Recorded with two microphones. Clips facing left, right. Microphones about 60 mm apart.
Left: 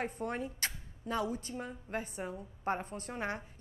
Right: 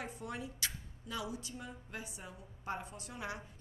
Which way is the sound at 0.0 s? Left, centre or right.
Left.